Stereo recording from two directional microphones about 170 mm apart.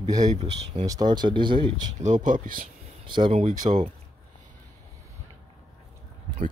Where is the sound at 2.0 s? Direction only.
50° right (ahead or behind).